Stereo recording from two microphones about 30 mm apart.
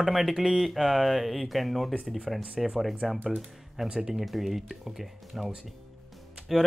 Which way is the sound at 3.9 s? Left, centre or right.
Right.